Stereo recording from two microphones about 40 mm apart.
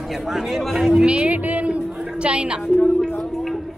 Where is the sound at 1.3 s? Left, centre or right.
Right.